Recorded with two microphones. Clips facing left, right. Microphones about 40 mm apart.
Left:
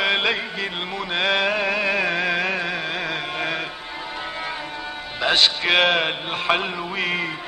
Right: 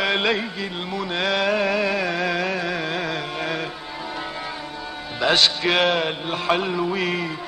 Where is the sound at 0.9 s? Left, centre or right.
Left.